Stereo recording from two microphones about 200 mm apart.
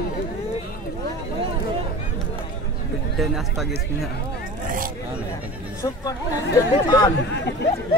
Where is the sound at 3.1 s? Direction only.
Centre (ahead or behind).